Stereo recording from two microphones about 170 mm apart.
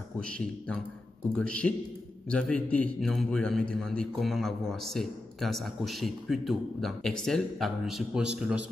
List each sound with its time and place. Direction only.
0.2 s a man's voice: 5° left (ahead or behind)